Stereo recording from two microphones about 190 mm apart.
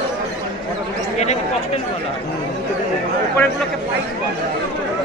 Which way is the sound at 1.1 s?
35° left (ahead or behind).